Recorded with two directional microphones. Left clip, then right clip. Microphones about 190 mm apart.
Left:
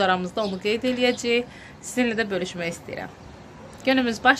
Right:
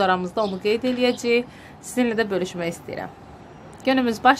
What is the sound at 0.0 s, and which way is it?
Speech, 10° right (ahead or behind).